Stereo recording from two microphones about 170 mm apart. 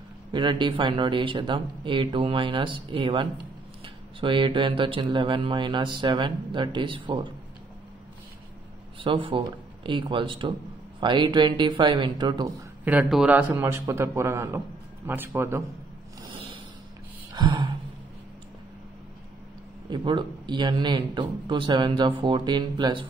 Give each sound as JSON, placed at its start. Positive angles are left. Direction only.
{"t": 0.3, "sound": "speech", "side_deg": -25}
{"t": 9.0, "sound": "speech", "side_deg": -30}
{"t": 12.8, "sound": "a man's voice", "side_deg": -5}
{"t": 16.2, "sound": "snort", "side_deg": -30}
{"t": 17.3, "sound": "a sound", "side_deg": -25}
{"t": 19.9, "sound": "speech", "side_deg": -25}